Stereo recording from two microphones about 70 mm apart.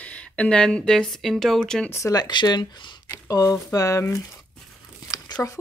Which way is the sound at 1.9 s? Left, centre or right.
Left.